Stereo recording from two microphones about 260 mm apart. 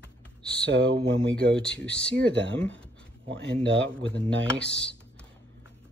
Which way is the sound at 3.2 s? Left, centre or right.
Right.